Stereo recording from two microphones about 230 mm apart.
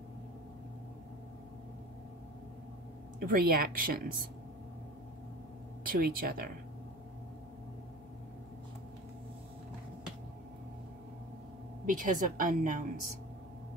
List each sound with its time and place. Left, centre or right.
3.3 s a woman's voice: right
5.9 s a woman's voice: right
11.8 s a woman's voice: right